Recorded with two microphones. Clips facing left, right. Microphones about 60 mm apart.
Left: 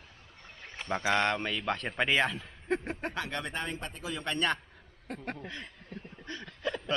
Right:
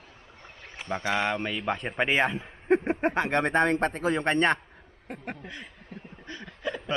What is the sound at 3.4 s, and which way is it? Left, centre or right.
Speech, right.